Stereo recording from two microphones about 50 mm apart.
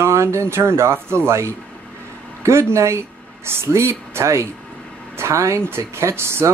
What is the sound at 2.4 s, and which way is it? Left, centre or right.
Speech, right.